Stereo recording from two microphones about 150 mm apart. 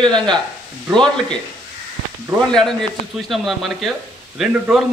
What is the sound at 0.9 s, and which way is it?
Speech, 5° left (ahead or behind).